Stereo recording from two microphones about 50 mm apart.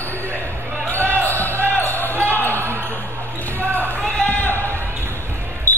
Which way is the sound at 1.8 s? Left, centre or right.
Left.